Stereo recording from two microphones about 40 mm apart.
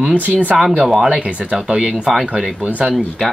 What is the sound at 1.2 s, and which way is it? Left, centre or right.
Speech, right.